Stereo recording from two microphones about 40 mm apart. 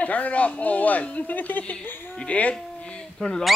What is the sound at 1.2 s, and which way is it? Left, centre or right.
Speech, left.